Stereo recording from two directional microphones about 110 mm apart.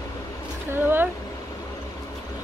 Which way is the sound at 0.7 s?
20° right (ahead or behind).